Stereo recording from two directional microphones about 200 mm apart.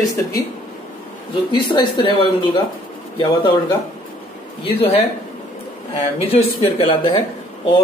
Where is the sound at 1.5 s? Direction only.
20° left (ahead or behind).